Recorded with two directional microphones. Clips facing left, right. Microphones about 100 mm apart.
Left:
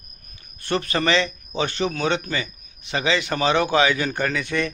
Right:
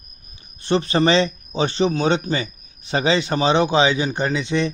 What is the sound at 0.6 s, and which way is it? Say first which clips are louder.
A man's voice: right 5 dB; 25° right (ahead or behind).